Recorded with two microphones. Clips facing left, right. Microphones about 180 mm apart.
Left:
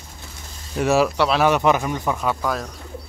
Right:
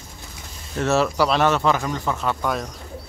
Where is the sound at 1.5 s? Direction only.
15° left (ahead or behind).